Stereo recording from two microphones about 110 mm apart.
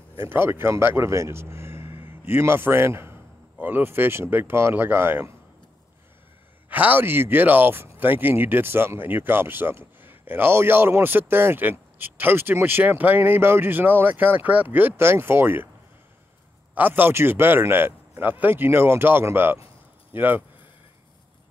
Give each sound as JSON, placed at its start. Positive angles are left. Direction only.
{"t": 0.2, "sound": "a man's voice", "side_deg": -20}
{"t": 6.7, "sound": "speech", "side_deg": -15}
{"t": 16.7, "sound": "speech", "side_deg": -15}